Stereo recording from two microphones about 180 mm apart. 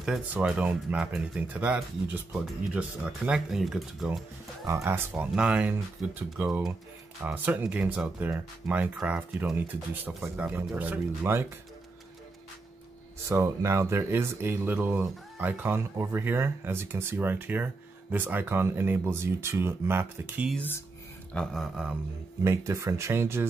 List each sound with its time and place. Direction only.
0.0 s speech: 5° right (ahead or behind)
13.3 s speech: 15° right (ahead or behind)
21.3 s a sound: 5° left (ahead or behind)
22.4 s speech: 15° right (ahead or behind)